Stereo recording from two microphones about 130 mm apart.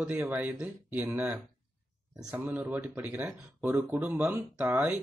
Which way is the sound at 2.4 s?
10° right (ahead or behind).